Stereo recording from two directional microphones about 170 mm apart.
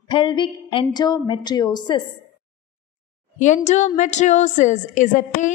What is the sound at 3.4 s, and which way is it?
A woman's voice, 45° left (ahead or behind).